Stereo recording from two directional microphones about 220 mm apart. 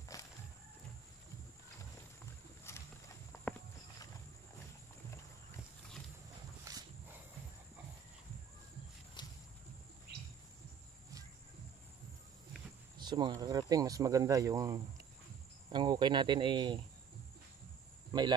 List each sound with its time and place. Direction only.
0.1 s walk: 15° left (ahead or behind)
2.7 s horse: 10° left (ahead or behind)
3.5 s walk: 5° left (ahead or behind)
6.7 s walk: 15° right (ahead or behind)
13.0 s speech: 20° right (ahead or behind)
15.7 s cricket: 20° right (ahead or behind)